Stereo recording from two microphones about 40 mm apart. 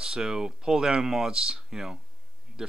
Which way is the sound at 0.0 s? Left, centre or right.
Centre.